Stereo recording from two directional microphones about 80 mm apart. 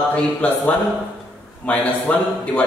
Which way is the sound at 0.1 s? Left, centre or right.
Centre.